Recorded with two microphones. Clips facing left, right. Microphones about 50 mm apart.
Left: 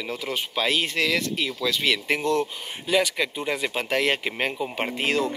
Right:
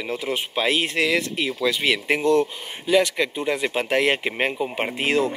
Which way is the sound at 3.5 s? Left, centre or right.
Centre.